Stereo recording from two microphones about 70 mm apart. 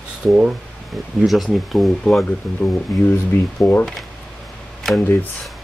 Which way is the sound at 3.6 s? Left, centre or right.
Left.